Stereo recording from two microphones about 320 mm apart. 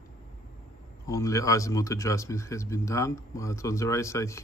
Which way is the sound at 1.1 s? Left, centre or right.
Centre.